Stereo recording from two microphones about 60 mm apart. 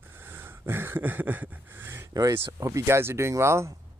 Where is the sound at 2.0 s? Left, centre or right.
Right.